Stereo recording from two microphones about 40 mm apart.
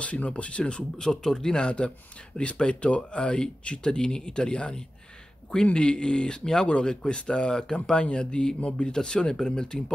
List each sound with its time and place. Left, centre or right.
0.0 s speech: left; by 9.8 s centre